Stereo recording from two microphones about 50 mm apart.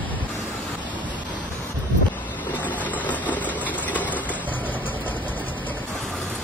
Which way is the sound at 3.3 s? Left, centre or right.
Left.